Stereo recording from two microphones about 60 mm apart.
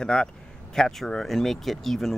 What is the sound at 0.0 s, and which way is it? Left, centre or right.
Speech, centre.